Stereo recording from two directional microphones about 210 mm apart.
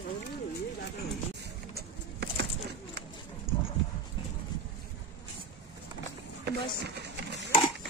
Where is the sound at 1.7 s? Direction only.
50° right (ahead or behind).